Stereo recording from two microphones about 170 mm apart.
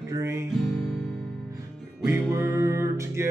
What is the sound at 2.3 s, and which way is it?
Music, 15° right (ahead or behind).